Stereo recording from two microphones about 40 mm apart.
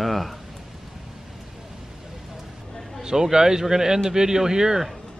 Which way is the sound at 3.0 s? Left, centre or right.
Centre.